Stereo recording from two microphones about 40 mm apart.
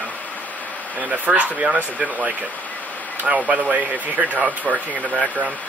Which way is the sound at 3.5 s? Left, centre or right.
Right.